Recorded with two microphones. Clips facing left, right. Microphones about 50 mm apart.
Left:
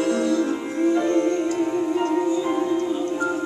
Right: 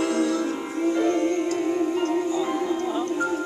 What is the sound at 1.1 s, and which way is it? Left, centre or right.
Music, centre.